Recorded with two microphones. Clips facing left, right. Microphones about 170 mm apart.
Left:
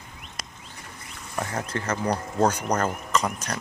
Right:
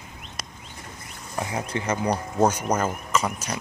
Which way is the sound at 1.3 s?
15° right (ahead or behind).